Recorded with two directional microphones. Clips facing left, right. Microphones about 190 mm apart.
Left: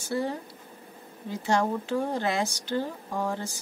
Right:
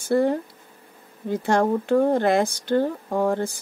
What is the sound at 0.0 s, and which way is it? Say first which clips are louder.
Speech: right 9 dB; 55° right (ahead or behind).